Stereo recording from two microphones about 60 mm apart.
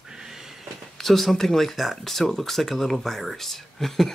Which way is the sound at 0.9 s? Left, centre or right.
Centre.